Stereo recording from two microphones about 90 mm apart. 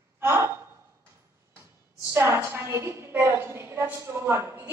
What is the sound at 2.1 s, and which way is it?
A woman's voice, 35° right (ahead or behind).